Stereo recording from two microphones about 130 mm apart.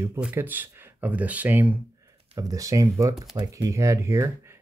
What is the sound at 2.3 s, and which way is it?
Speech, 25° right (ahead or behind).